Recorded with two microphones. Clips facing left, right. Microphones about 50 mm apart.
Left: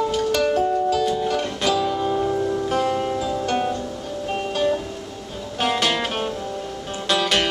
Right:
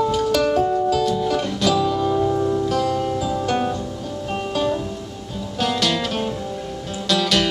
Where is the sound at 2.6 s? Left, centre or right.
Left.